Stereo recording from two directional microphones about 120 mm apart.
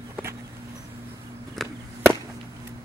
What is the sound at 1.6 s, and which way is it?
Chop, 5° left (ahead or behind).